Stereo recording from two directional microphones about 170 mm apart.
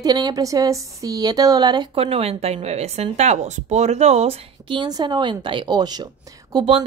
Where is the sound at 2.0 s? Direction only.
35° right (ahead or behind).